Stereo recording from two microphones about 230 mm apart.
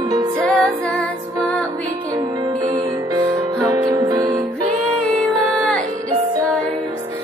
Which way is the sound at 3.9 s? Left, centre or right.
Centre.